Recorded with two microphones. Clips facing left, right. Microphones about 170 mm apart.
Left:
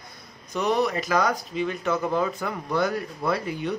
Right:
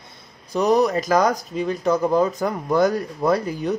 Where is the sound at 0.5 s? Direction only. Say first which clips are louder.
Right 6 dB; 40° right (ahead or behind).